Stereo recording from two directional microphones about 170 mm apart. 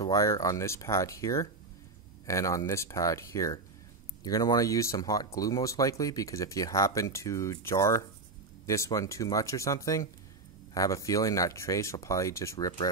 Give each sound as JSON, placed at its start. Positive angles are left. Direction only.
{"t": 0.0, "sound": "speech", "side_deg": 20}